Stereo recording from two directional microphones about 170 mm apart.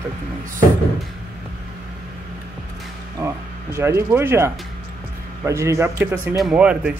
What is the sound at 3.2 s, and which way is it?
Speech, 15° right (ahead or behind).